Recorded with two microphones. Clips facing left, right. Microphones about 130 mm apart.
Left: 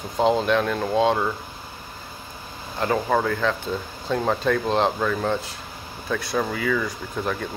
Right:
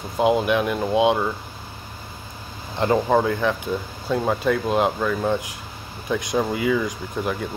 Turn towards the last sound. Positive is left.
turn(degrees=-10)  # may be behind; listen again after turning